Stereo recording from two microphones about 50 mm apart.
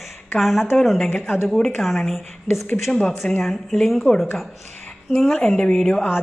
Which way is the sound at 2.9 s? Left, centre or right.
Centre.